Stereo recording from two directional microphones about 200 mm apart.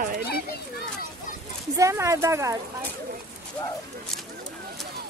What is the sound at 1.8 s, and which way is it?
Speech, 15° right (ahead or behind).